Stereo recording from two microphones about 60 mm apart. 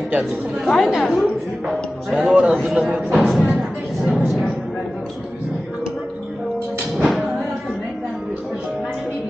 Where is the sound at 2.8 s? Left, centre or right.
Centre.